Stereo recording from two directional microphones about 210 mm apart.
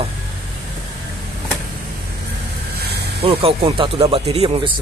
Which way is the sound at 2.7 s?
50° right (ahead or behind).